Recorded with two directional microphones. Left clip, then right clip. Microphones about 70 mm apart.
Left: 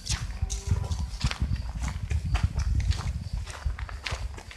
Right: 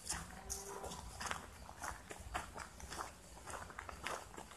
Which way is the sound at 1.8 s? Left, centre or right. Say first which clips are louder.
Left 5 dB; centre.